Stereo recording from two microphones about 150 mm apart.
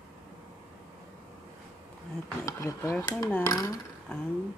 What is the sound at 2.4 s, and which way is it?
Speech, 20° left (ahead or behind).